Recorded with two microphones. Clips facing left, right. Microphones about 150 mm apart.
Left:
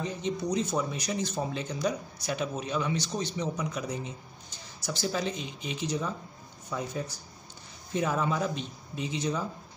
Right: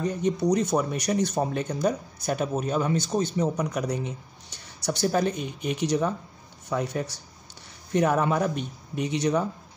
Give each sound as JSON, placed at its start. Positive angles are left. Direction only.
{"t": 0.0, "sound": "a man's voice", "side_deg": -60}
{"t": 1.4, "sound": "speech", "side_deg": -55}
{"t": 4.8, "sound": "a man's voice", "side_deg": -50}